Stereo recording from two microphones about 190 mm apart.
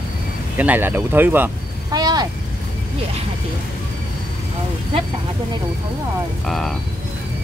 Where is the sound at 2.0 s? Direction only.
20° right (ahead or behind).